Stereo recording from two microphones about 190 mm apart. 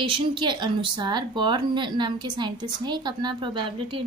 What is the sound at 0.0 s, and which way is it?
A woman's voice, 25° right (ahead or behind).